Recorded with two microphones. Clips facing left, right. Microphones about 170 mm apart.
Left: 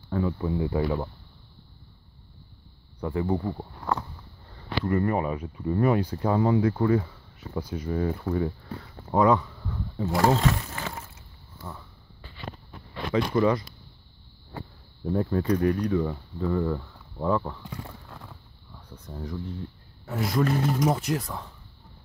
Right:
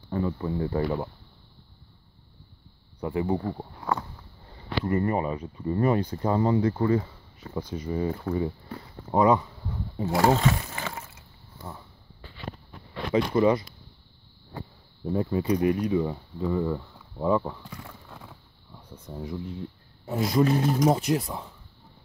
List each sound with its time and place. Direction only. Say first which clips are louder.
0.1 s speech: left 1 dB; centre (ahead or behind)
0.8 s speech: even; 5° right (ahead or behind)
3.0 s speech: even; 15° right (ahead or behind)
10.2 s a sound: even; 10° right (ahead or behind)
13.1 s speech: right 1 dB; 15° right (ahead or behind)
15.0 s speech: left 1 dB; 5° right (ahead or behind)
17.6 s clip-clop: left 3 dB; 25° left (ahead or behind)
19.1 s speech: right 1 dB; 15° right (ahead or behind)